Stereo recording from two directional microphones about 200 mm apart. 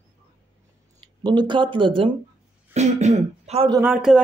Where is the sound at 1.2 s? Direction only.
25° right (ahead or behind).